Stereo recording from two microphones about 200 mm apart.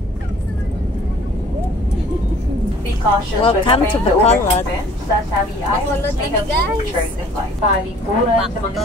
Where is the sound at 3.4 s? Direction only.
25° left (ahead or behind).